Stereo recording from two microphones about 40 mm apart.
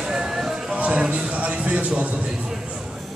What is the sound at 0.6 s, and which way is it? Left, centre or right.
Music, right.